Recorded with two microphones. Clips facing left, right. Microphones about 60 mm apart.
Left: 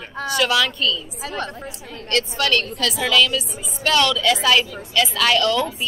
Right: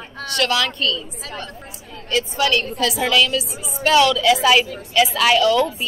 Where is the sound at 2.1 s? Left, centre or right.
Centre.